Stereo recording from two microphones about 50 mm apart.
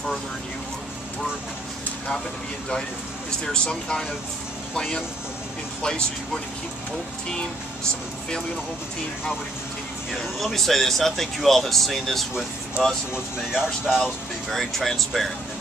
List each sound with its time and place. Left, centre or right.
3.3 s speech: centre
10.1 s speech: centre
13.8 s speech: centre
14.5 s speech: centre